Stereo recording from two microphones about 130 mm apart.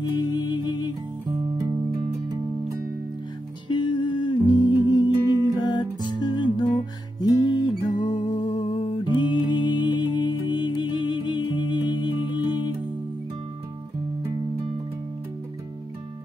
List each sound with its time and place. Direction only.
0.1 s music: 30° left (ahead or behind)
1.4 s music: 35° right (ahead or behind)
3.6 s music: 35° left (ahead or behind)